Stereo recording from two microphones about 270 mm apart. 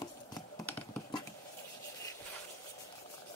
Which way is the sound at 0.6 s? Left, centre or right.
Centre.